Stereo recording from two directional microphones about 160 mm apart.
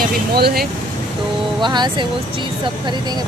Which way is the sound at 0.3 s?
75° right (ahead or behind).